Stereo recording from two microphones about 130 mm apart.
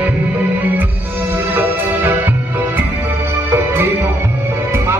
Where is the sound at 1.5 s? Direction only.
15° right (ahead or behind).